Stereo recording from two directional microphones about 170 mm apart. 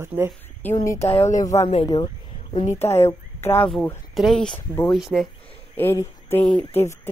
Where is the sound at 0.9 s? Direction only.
40° left (ahead or behind).